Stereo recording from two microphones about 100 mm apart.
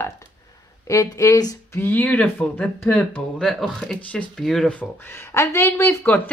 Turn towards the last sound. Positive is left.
turn(degrees=15)  # may be behind; listen again after turning